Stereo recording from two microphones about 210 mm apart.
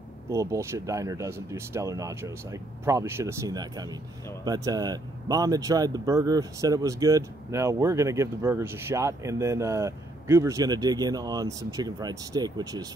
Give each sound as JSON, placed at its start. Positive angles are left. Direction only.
{"t": 0.3, "sound": "speech", "side_deg": -15}